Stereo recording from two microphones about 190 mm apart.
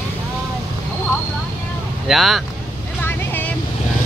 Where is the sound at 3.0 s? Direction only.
10° left (ahead or behind).